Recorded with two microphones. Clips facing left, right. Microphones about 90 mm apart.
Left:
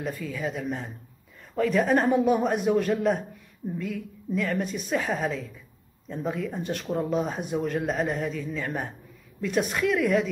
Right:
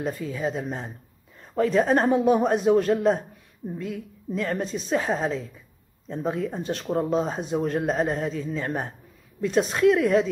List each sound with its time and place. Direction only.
0.0 s speech: 20° right (ahead or behind)